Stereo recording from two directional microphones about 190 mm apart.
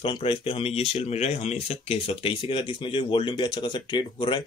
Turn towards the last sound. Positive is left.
turn(degrees=25)  # may be behind; listen again after turning